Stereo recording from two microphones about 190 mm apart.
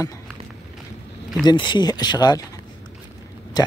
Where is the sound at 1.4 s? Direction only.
20° left (ahead or behind).